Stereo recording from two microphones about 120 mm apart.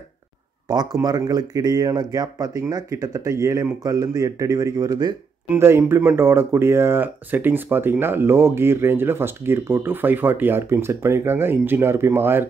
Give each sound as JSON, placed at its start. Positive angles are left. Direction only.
{"t": 0.7, "sound": "speech", "side_deg": -35}
{"t": 5.5, "sound": "speech", "side_deg": -20}